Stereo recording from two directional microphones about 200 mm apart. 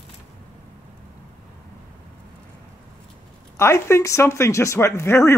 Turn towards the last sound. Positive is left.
turn(degrees=15)  # may be behind; listen again after turning